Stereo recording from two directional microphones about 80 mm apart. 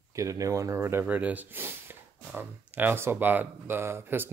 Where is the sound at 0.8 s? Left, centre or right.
Right.